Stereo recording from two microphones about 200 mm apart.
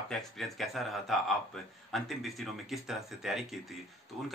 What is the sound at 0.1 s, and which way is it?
Speech, centre (ahead or behind).